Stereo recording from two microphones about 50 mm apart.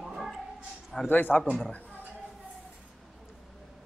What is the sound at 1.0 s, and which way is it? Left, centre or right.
Speech, left.